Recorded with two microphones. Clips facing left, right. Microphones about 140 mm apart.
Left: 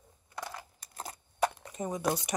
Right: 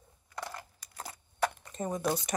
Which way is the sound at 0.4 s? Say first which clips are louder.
Even; 5° left (ahead or behind).